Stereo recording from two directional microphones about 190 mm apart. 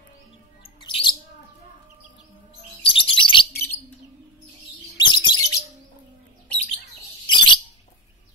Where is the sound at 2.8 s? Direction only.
25° left (ahead or behind).